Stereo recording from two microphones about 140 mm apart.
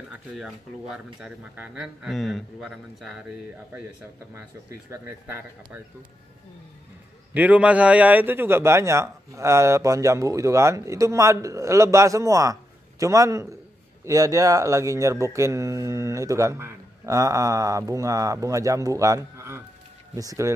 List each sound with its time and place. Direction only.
0.1 s speech: 5° right (ahead or behind)
4.3 s speech: 20° right (ahead or behind)
7.3 s speech: 10° right (ahead or behind)